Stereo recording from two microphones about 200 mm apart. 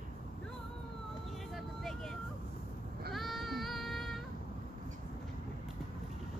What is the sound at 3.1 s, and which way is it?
Child singing, centre (ahead or behind).